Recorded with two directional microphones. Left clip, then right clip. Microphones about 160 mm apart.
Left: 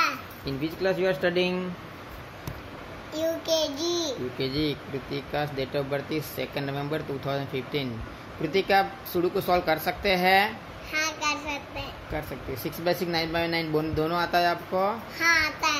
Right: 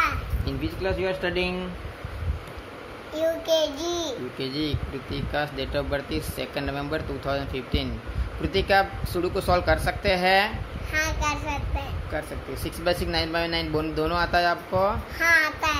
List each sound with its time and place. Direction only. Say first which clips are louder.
0.5 s speech: left 1 dB; centre (ahead or behind)
3.2 s a child's voice: right 3 dB; 20° right (ahead or behind)
4.4 s speech: left 2 dB; 5° right (ahead or behind)
10.9 s a child's voice: right 1 dB; 25° right (ahead or behind)
12.8 s speech: right 2 dB; 5° right (ahead or behind)
15.1 s a child's voice: right 2 dB; 20° right (ahead or behind)